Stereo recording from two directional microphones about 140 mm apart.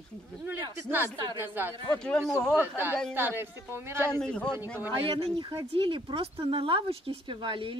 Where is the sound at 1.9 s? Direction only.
5° left (ahead or behind).